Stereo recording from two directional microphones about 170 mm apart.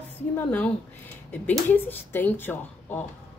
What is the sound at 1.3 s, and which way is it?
Speech, 10° left (ahead or behind).